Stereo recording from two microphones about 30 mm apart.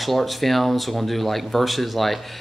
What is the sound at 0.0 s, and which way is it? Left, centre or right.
Speech, centre.